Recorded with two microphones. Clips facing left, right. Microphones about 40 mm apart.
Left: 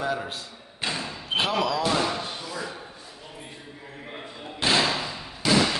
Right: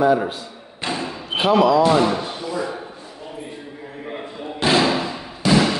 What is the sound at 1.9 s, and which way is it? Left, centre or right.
Speech, centre.